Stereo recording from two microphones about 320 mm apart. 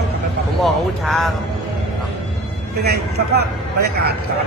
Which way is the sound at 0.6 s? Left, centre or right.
Centre.